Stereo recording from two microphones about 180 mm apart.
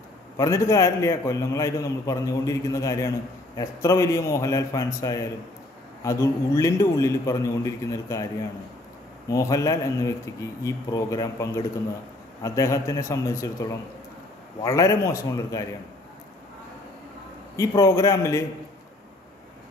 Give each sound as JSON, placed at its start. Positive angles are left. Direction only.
{"t": 0.4, "sound": "a man's voice", "side_deg": 15}
{"t": 9.3, "sound": "a man's voice", "side_deg": 20}
{"t": 17.6, "sound": "a man's voice", "side_deg": 15}